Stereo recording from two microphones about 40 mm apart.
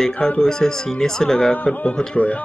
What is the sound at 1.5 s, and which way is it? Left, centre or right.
Speech, left.